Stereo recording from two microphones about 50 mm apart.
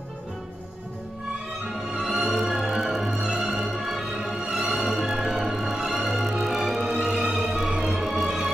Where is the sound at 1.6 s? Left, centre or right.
Centre.